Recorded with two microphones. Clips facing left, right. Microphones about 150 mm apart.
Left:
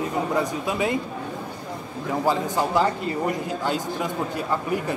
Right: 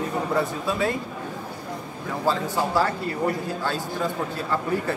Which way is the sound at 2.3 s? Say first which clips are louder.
Even; 20° left (ahead or behind).